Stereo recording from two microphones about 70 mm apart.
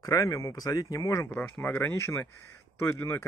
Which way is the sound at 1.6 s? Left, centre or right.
Left.